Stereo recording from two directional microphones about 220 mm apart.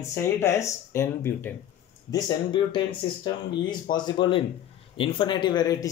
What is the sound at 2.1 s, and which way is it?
Speech, 20° left (ahead or behind).